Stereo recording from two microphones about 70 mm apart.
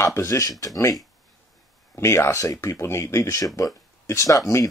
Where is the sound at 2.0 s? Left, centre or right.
Left.